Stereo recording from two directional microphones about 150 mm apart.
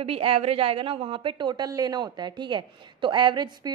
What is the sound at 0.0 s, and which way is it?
A woman's voice, 40° right (ahead or behind).